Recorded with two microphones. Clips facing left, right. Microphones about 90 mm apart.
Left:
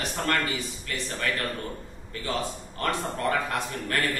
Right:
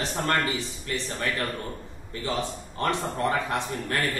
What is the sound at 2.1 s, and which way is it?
A man's voice, 25° right (ahead or behind).